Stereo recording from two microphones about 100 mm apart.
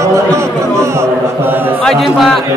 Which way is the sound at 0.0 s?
30° right (ahead or behind).